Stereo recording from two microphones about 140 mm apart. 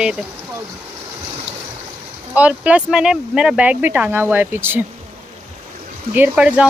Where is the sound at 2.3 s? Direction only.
10° right (ahead or behind).